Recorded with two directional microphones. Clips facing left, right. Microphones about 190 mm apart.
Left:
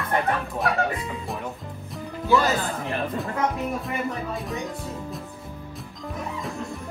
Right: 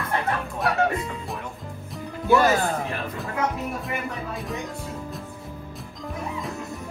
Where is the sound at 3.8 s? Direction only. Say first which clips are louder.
Left 2 dB; centre (ahead or behind).